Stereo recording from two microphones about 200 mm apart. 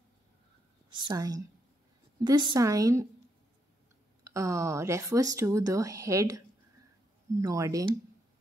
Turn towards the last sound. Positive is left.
turn(degrees=-15)  # may be behind; listen again after turning